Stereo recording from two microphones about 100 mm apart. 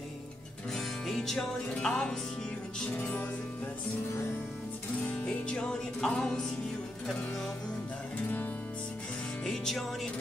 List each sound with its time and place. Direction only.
0.7 s music: 5° left (ahead or behind)
5.2 s music: 10° left (ahead or behind)
9.4 s music: 5° left (ahead or behind)